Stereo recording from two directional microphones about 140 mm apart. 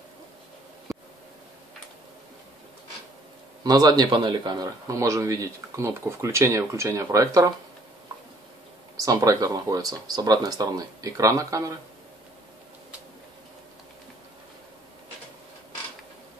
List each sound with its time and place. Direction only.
3.6 s speech: 30° right (ahead or behind)
8.9 s speech: 25° right (ahead or behind)